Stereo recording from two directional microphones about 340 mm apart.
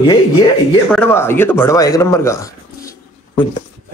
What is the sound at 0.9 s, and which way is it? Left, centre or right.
Speech, centre.